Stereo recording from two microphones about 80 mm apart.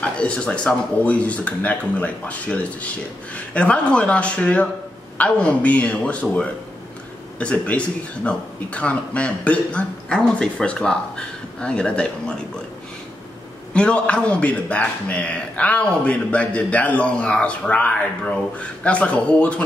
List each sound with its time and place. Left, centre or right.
0.0 s a man's voice: centre
13.7 s a man's voice: centre